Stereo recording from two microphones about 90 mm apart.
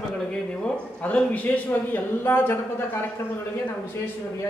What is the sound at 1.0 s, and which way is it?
A man's voice, 15° left (ahead or behind).